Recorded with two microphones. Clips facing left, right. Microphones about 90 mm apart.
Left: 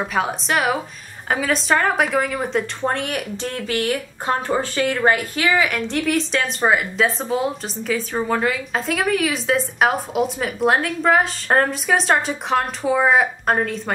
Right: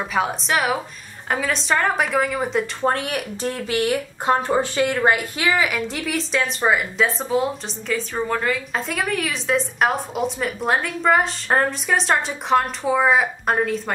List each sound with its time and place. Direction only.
0.0 s a woman's voice: centre (ahead or behind)
3.4 s a woman's voice: 15° right (ahead or behind)
5.6 s a woman's voice: 5° right (ahead or behind)